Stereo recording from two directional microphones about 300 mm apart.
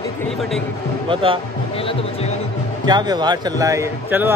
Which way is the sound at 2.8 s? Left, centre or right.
Centre.